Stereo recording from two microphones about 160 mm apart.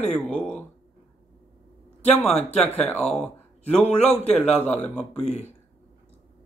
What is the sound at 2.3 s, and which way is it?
Speech, 40° left (ahead or behind).